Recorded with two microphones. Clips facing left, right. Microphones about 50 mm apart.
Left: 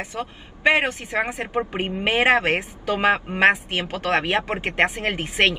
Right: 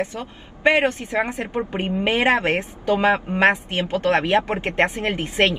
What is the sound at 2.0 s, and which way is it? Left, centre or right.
Speech, left.